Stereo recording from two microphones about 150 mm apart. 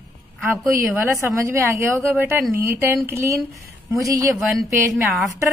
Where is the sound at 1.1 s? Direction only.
20° right (ahead or behind).